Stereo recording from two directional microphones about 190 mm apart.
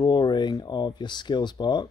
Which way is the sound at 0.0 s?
20° left (ahead or behind).